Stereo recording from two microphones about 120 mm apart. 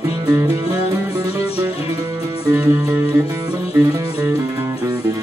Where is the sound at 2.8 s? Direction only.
30° right (ahead or behind).